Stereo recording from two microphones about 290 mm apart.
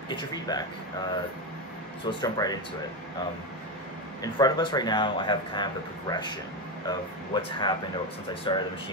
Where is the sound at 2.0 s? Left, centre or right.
Centre.